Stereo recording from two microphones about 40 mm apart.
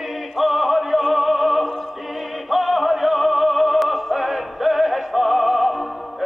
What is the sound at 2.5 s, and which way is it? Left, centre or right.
Music, centre.